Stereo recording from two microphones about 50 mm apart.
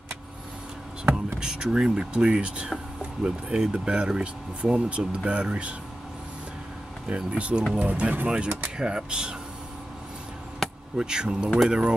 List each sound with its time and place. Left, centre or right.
1.1 s speech: centre
7.1 s speech: right
8.7 s speech: centre
10.6 s a sound: centre
11.0 s speech: centre